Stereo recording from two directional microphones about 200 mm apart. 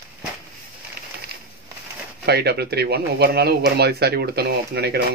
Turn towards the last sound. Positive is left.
turn(degrees=-55)  # may be behind; listen again after turning